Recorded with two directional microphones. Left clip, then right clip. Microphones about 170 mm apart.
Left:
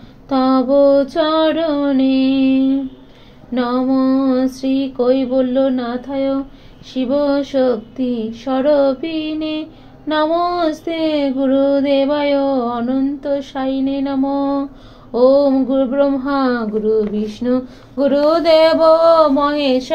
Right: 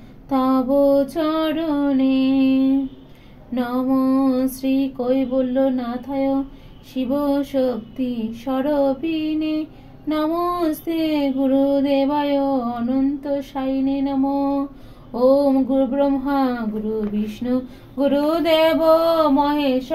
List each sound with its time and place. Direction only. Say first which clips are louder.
0.3 s female singing: left 5 dB; 20° left (ahead or behind)